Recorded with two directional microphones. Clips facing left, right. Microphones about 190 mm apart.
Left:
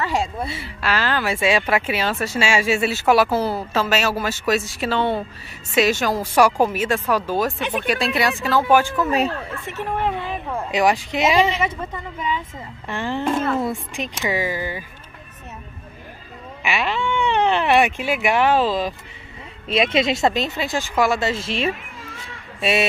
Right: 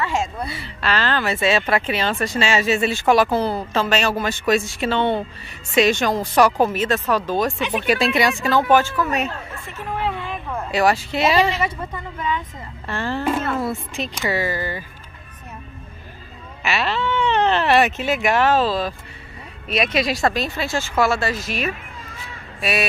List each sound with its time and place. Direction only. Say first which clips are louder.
0.0 s a woman's voice: even; 35° left (ahead or behind)
0.7 s speech: right 1 dB; 10° left (ahead or behind)
8.9 s speech: left 2 dB; 25° left (ahead or behind)
10.5 s speech: even; 15° left (ahead or behind)
13.2 s speech: left 2 dB; 5° right (ahead or behind)
13.6 s speech: even; 15° left (ahead or behind)
16.6 s speech: right 1 dB; 15° left (ahead or behind)